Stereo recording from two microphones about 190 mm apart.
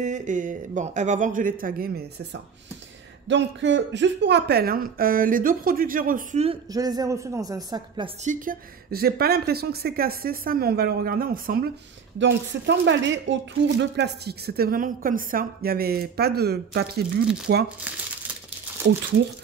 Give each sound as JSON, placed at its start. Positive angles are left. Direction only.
{"t": 0.0, "sound": "a woman's voice", "side_deg": -40}
{"t": 3.3, "sound": "a woman's voice", "side_deg": -70}
{"t": 6.7, "sound": "a woman's voice", "side_deg": -20}
{"t": 8.2, "sound": "a woman's voice", "side_deg": -45}
{"t": 12.2, "sound": "speech", "side_deg": -70}
{"t": 17.9, "sound": "speech", "side_deg": -5}